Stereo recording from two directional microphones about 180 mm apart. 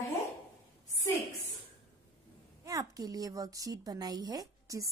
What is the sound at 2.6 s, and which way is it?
A woman's voice, 20° right (ahead or behind).